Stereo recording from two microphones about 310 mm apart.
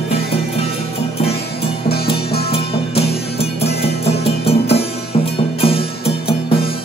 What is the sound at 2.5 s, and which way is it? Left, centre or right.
Music, centre.